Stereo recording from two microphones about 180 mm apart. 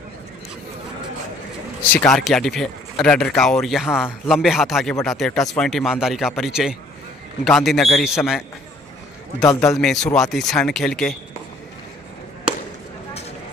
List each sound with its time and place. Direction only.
1.8 s a man's voice: 10° left (ahead or behind)
9.4 s a man's voice: 15° left (ahead or behind)
9.8 s a man's voice: 5° left (ahead or behind)